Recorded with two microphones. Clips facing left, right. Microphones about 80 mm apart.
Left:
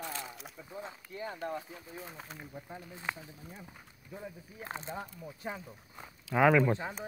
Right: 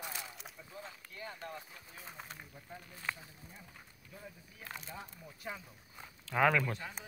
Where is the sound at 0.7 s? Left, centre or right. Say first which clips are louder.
Left 8 dB; left.